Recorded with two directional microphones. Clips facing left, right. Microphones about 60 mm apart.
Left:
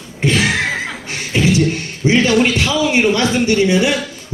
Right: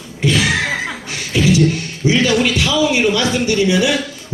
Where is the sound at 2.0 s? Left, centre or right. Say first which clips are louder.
Left 2 dB; left.